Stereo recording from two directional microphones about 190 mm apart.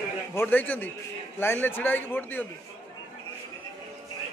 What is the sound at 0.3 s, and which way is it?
A man's voice, 10° left (ahead or behind).